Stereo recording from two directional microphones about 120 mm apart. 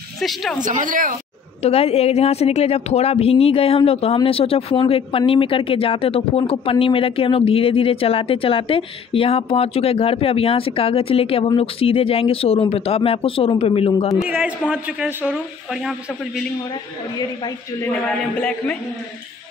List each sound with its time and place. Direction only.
0.2 s speech: centre (ahead or behind)
0.7 s speech: 90° right
1.6 s a woman's voice: 60° left (ahead or behind)
14.2 s speech: 10° right (ahead or behind)
17.2 s a woman's voice: 35° left (ahead or behind)